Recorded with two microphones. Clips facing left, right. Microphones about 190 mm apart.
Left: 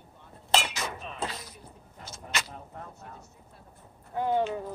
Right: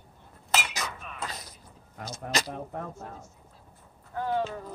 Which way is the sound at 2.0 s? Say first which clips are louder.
Right 5 dB; 40° right (ahead or behind).